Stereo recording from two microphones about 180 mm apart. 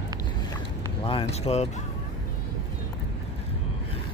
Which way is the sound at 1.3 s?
35° left (ahead or behind).